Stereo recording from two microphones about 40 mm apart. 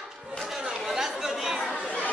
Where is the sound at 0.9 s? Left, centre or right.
Centre.